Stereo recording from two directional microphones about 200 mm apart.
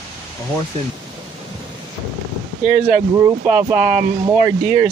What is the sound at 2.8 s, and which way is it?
Speech, 40° right (ahead or behind).